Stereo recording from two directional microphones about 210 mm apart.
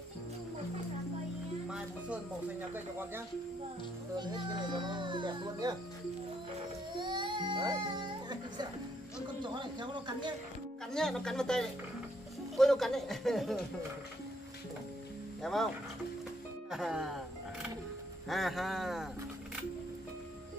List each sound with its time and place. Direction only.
2.7 s speech: 10° right (ahead or behind)
4.2 s speech: 20° right (ahead or behind)
7.0 s music: 20° right (ahead or behind)
9.4 s speech: 20° right (ahead or behind)
10.9 s speech: centre (ahead or behind)
15.4 s speech: centre (ahead or behind)
16.7 s a sound: centre (ahead or behind)
18.3 s speech: centre (ahead or behind)